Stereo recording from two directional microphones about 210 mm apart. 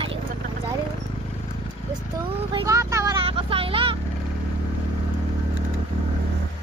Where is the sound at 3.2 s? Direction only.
25° right (ahead or behind).